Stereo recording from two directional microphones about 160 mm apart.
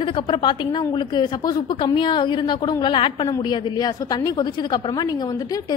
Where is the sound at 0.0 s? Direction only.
35° left (ahead or behind).